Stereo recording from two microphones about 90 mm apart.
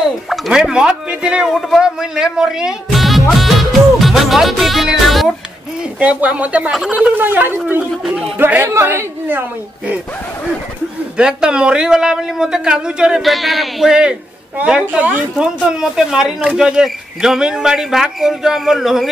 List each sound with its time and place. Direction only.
0.3 s speech: 10° right (ahead or behind)
5.9 s a man's voice: 15° right (ahead or behind)
11.1 s a man's voice: 10° right (ahead or behind)